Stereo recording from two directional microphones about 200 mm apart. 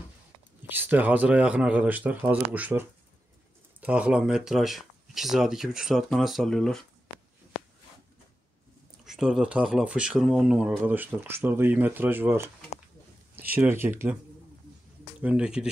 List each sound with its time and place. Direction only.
0.7 s speech: 10° right (ahead or behind)
9.0 s speech: centre (ahead or behind)
15.2 s speech: 5° right (ahead or behind)